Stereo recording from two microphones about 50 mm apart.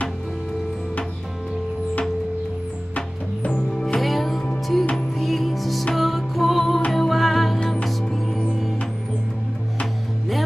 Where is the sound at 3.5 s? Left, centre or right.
Centre.